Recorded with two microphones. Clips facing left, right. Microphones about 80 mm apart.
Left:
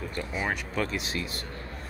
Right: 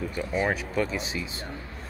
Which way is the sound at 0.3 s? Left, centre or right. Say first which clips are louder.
Right 5 dB; centre.